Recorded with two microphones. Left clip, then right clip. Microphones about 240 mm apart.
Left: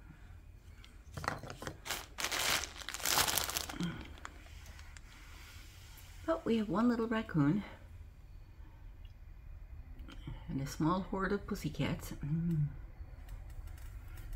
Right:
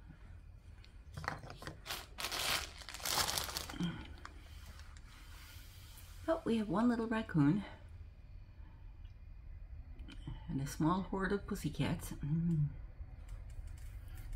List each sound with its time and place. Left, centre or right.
1.1 s a sound: left
6.2 s speech: centre
10.5 s speech: centre